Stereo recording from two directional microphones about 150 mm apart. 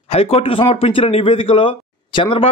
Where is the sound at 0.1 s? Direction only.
40° left (ahead or behind).